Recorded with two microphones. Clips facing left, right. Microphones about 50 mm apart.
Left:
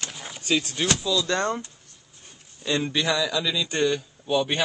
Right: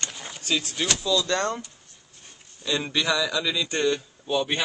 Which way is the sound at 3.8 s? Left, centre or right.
Centre.